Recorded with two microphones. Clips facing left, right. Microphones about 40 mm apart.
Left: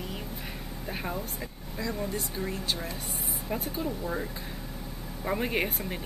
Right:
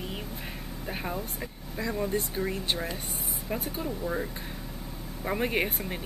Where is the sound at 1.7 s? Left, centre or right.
Right.